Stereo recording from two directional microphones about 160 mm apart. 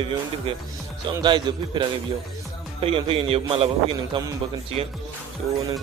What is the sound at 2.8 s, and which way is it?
A man's voice, 35° right (ahead or behind).